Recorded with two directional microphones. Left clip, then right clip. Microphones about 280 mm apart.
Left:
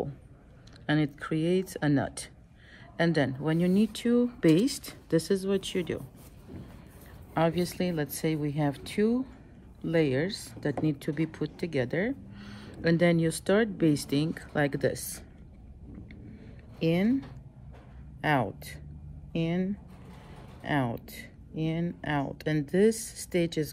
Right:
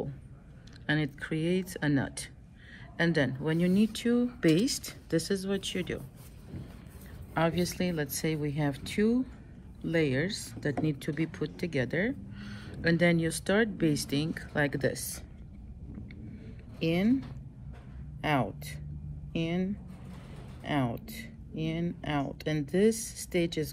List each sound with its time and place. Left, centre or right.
0.8 s speech: left
7.3 s speech: left
16.8 s speech: left
18.2 s speech: left